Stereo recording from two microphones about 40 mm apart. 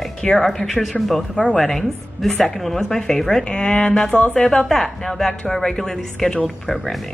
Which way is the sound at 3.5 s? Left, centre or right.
Left.